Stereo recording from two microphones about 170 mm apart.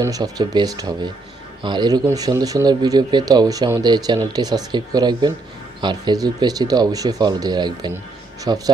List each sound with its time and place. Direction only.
0.0 s speech: 20° right (ahead or behind)